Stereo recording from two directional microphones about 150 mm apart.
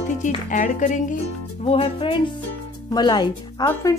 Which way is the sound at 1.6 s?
40° left (ahead or behind).